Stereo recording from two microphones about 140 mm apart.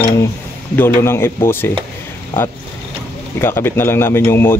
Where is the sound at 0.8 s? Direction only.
20° left (ahead or behind).